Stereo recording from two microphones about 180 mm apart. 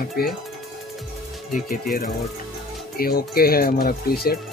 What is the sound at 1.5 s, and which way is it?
Speech, 50° left (ahead or behind).